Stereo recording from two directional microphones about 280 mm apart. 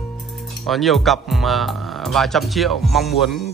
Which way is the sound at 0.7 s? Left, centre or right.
Centre.